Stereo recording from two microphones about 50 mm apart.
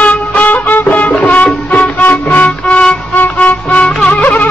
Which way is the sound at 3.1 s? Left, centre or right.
Left.